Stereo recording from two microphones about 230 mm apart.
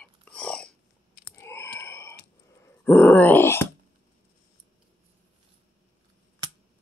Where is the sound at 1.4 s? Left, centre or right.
Centre.